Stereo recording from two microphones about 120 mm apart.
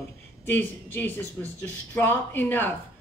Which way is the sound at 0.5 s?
15° left (ahead or behind).